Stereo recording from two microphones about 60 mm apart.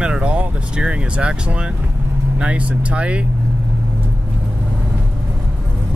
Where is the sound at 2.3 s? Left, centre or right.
Centre.